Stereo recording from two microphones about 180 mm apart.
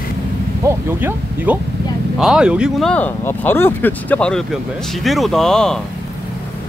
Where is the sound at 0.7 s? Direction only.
10° right (ahead or behind).